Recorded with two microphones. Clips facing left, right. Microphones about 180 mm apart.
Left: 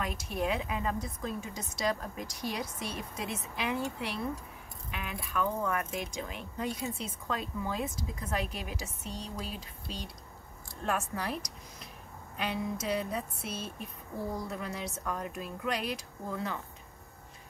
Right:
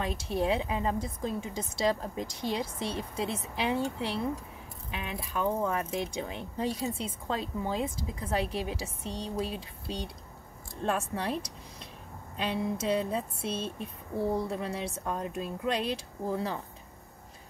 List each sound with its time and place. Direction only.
0.0 s speech: 30° right (ahead or behind)
10.8 s speech: 30° right (ahead or behind)
12.4 s speech: 30° right (ahead or behind)